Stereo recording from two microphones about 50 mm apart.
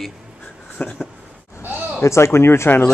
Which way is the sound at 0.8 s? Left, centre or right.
Left.